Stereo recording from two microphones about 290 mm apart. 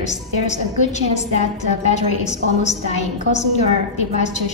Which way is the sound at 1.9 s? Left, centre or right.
Left.